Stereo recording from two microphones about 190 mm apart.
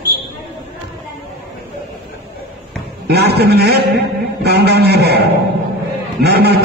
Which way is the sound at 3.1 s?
60° right (ahead or behind).